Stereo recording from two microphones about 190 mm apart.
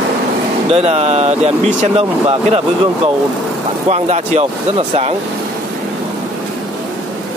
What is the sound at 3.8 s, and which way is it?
Speech, 35° right (ahead or behind).